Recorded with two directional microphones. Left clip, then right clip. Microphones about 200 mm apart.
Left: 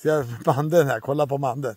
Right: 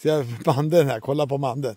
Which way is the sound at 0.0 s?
20° right (ahead or behind).